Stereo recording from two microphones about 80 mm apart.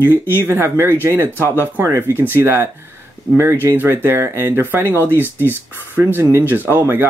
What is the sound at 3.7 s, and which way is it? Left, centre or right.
Speech, right.